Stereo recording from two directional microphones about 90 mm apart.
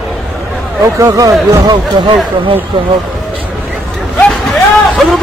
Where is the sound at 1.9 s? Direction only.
60° right (ahead or behind).